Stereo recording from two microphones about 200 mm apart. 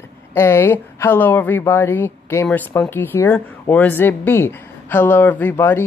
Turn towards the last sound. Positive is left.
turn(degrees=10)  # may be behind; listen again after turning